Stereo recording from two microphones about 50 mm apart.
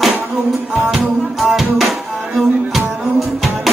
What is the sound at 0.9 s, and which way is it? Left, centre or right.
Music, centre.